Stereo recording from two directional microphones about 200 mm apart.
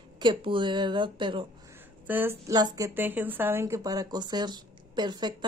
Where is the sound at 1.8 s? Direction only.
10° right (ahead or behind).